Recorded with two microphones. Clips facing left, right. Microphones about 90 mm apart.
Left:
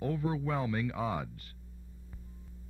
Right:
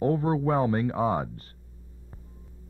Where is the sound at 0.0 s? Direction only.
40° right (ahead or behind).